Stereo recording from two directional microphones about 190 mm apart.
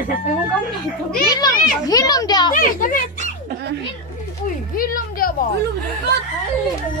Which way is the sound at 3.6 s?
60° right (ahead or behind).